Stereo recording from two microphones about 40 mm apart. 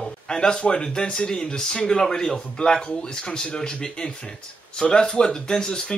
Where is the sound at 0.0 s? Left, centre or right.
Centre.